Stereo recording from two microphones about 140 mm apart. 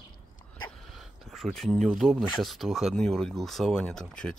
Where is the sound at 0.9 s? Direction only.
Centre (ahead or behind).